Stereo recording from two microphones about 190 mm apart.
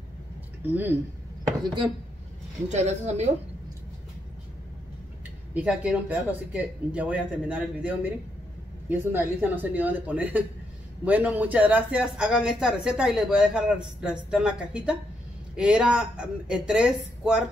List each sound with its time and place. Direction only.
0.7 s speech: 10° right (ahead or behind)
2.7 s a woman's voice: 35° right (ahead or behind)
5.5 s speech: 5° right (ahead or behind)